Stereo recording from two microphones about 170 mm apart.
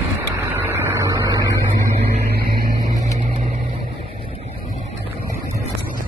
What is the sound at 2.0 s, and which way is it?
Vehicle, 60° right (ahead or behind).